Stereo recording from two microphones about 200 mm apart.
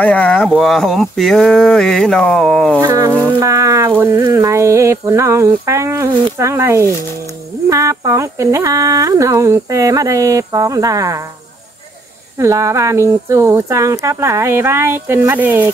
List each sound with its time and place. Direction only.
0.0 s speech: 5° left (ahead or behind)
2.8 s speech: 15° right (ahead or behind)
12.4 s speech: 15° right (ahead or behind)